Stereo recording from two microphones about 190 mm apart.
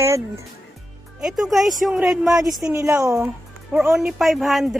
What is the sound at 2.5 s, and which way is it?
Speech, 15° right (ahead or behind).